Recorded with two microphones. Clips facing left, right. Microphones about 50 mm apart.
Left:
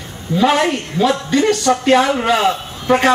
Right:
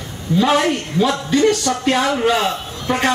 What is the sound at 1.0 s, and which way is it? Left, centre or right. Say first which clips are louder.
A man's voice: left 2 dB; centre.